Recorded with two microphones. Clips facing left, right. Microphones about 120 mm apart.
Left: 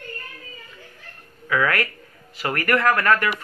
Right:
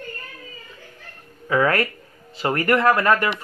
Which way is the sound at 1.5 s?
30° right (ahead or behind).